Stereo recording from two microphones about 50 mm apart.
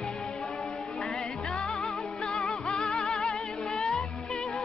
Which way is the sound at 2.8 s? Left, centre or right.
Centre.